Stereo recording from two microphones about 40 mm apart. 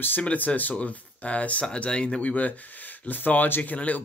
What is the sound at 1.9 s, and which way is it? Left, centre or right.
Speech, centre.